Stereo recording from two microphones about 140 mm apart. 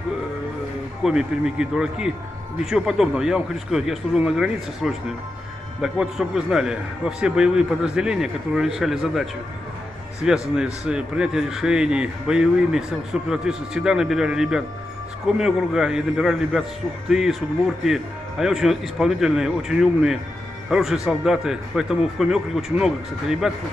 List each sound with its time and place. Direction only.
1.0 s a man's voice: 5° right (ahead or behind)